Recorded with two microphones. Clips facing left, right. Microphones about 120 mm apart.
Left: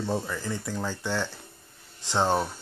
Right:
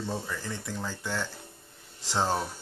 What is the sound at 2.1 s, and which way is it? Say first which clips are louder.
Speech: left 4 dB; 25° left (ahead or behind).